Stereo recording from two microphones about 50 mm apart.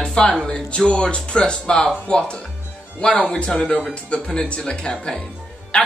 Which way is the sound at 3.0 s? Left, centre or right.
Left.